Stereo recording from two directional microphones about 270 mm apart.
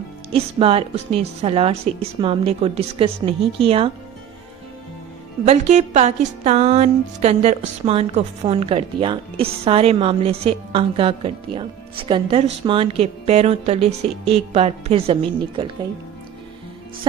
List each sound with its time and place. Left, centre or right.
0.3 s a woman's voice: right
5.4 s a woman's voice: right